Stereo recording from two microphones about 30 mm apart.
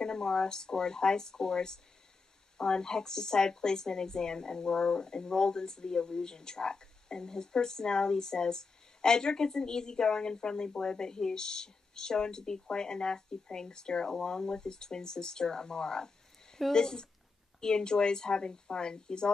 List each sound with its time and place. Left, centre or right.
0.0 s a woman's voice: left